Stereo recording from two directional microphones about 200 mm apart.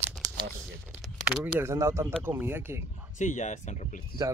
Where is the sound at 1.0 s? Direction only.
10° right (ahead or behind).